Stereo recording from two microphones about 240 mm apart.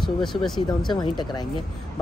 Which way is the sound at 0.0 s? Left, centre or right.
Centre.